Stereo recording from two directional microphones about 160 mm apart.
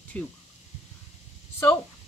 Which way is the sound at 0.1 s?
10° left (ahead or behind).